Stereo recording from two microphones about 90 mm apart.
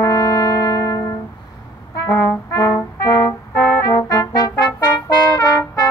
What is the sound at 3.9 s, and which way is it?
Trombone, 45° left (ahead or behind).